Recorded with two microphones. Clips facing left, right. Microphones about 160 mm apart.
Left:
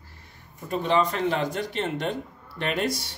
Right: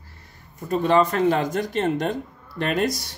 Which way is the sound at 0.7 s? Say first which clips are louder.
Right 4 dB; 45° right (ahead or behind).